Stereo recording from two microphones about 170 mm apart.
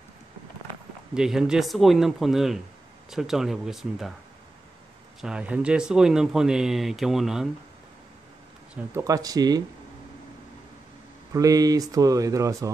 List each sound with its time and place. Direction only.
1.1 s speech: 5° right (ahead or behind)
5.2 s speech: 5° right (ahead or behind)
8.9 s speech: 20° right (ahead or behind)
11.3 s speech: 20° right (ahead or behind)